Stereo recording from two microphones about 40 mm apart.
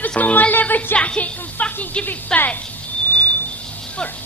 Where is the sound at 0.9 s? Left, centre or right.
Left.